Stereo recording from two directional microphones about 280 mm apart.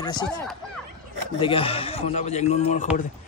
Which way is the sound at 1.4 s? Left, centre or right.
Centre.